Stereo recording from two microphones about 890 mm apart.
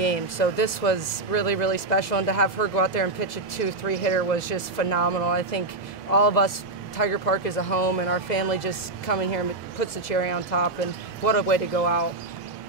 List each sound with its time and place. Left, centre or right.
0.0 s speech: left